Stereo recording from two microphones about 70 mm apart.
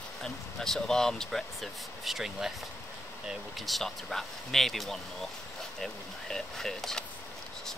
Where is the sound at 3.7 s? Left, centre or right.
Centre.